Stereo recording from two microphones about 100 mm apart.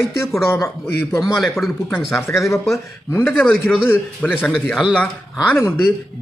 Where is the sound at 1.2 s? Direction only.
Centre (ahead or behind).